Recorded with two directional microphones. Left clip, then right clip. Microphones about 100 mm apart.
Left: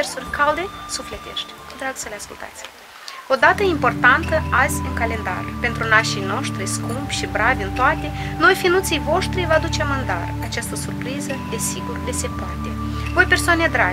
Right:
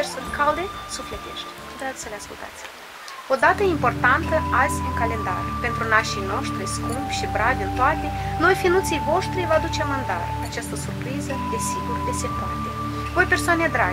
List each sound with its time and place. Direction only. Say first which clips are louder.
0.0 s speech: left 3 dB; 25° left (ahead or behind)
3.3 s speech: left 3 dB; 25° left (ahead or behind)